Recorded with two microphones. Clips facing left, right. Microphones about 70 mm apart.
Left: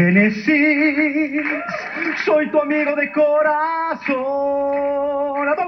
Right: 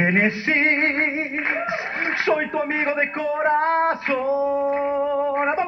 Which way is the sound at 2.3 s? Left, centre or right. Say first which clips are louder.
Left 8 dB; left.